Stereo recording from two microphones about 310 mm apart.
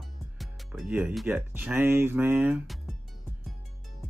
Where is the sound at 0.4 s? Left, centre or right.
Centre.